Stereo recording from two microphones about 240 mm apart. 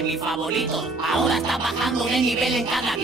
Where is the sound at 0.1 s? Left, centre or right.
Centre.